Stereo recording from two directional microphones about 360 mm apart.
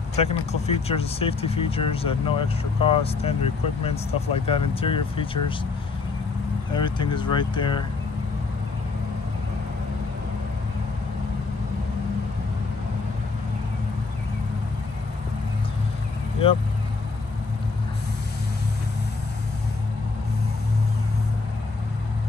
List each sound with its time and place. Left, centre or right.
0.2 s speech: centre
6.7 s speech: centre